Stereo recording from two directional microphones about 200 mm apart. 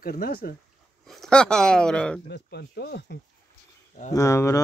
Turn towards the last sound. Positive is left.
turn(degrees=15)  # may be behind; listen again after turning